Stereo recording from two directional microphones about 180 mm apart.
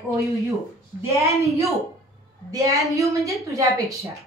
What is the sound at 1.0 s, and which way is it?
A woman's voice, 15° right (ahead or behind).